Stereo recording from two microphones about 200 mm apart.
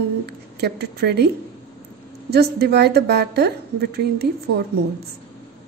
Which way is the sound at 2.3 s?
50° right (ahead or behind).